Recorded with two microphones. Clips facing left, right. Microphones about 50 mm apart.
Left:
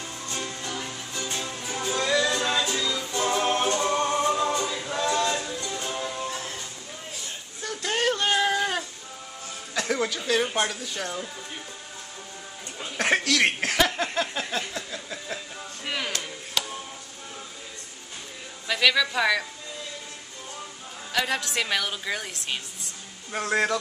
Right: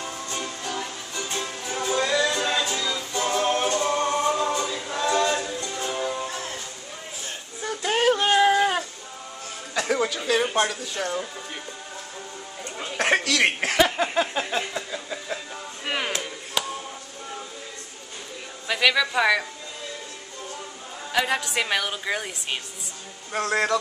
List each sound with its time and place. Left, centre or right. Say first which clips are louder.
0.0 s music: right 2 dB; right
3.2 s music: right 1 dB; centre
7.6 s child singing: right 4 dB; centre
9.8 s a sound: right 2 dB; centre
12.9 s a sound: right 1 dB; centre
16.1 s music: right 3 dB; centre
18.7 s a woman's voice: right 1 dB; centre
21.1 s a woman's voice: right 3 dB; centre
23.4 s a sound: right 1 dB; centre